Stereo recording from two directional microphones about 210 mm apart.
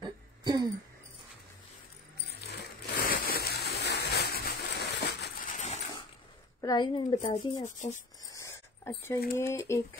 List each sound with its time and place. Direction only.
0.0 s throat clearing: 20° right (ahead or behind)
2.2 s a sound: 50° left (ahead or behind)
6.6 s a woman's voice: 20° left (ahead or behind)
7.6 s speech: 35° left (ahead or behind)
8.2 s a sound: 15° left (ahead or behind)
9.4 s speech: 15° left (ahead or behind)